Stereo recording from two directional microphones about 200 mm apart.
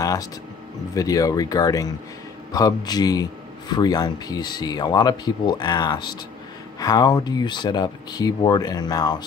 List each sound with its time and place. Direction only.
0.0 s a man's voice: 15° left (ahead or behind)